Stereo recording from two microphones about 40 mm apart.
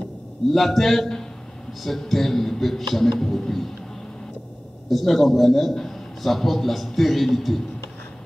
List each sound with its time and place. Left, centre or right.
0.5 s speech: centre
4.8 s a man's voice: centre